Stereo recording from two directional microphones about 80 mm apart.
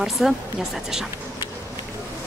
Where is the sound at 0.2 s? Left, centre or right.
Centre.